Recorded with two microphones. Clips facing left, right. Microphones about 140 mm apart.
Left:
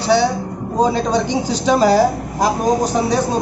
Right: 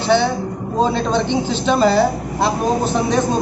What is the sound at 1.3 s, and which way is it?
Speech, 40° left (ahead or behind).